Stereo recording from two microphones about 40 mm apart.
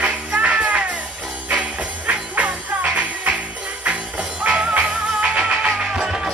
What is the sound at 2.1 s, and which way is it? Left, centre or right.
Music, right.